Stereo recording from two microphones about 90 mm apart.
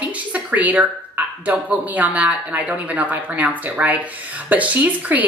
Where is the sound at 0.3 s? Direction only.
15° right (ahead or behind).